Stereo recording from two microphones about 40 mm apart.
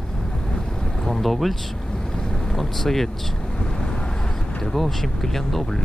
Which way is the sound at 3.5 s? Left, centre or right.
Centre.